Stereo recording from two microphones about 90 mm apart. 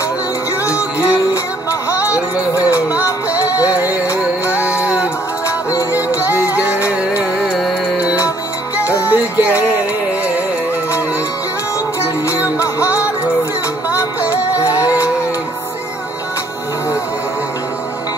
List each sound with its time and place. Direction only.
1.3 s music: 35° left (ahead or behind)
2.7 s music: 20° right (ahead or behind)
3.3 s music: 35° left (ahead or behind)
6.5 s music: 15° right (ahead or behind)
8.7 s music: 15° right (ahead or behind)
12.5 s music: 35° left (ahead or behind)
14.3 s music: 35° left (ahead or behind)